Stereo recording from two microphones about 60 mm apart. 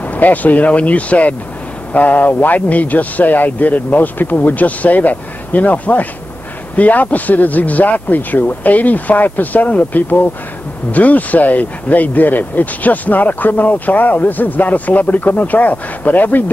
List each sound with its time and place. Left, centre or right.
0.0 s speech: left